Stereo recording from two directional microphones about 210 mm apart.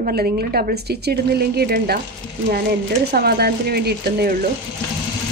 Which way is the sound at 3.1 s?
50° right (ahead or behind).